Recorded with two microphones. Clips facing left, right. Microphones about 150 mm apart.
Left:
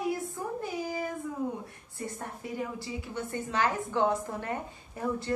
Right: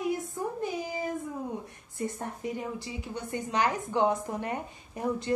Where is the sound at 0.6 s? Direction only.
20° right (ahead or behind).